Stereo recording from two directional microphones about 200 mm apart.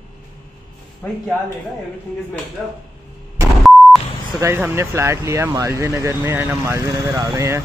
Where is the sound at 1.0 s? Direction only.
10° left (ahead or behind).